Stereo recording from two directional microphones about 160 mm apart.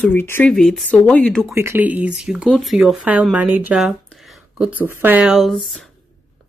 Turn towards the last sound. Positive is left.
turn(degrees=0)  # may be behind; listen again after turning